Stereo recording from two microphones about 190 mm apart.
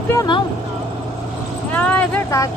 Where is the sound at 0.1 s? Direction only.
20° left (ahead or behind).